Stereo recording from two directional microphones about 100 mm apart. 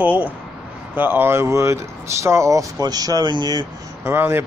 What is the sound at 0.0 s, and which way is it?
Speech, 15° right (ahead or behind).